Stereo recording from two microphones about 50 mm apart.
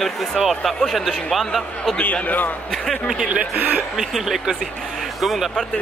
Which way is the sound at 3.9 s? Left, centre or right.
Centre.